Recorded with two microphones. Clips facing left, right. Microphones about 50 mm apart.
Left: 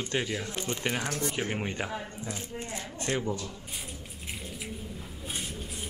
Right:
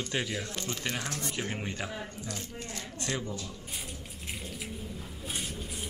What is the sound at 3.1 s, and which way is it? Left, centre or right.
Speech, left.